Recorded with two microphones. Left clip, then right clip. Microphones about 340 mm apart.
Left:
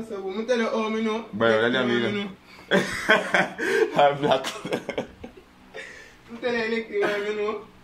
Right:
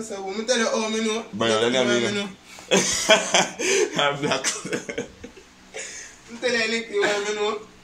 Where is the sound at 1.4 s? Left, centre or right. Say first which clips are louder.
Even; centre.